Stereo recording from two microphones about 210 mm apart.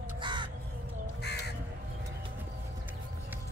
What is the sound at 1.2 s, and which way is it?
Crow, 55° left (ahead or behind).